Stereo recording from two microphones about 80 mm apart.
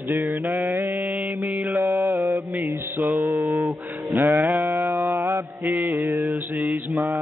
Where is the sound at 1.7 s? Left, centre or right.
Right.